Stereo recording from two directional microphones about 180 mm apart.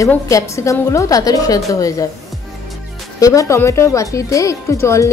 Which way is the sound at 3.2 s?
15° left (ahead or behind).